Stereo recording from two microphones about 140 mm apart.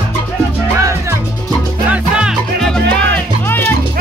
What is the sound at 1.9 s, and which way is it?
Music, 5° right (ahead or behind).